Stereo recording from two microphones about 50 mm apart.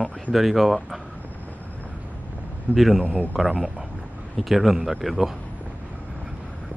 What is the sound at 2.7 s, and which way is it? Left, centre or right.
A man's voice, centre.